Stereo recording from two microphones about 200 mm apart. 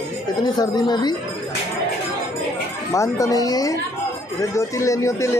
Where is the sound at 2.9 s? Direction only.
15° left (ahead or behind).